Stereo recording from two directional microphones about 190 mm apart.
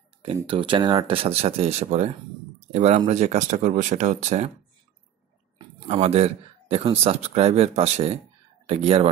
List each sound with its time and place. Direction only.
0.2 s speech: 25° right (ahead or behind)
5.9 s speech: 35° right (ahead or behind)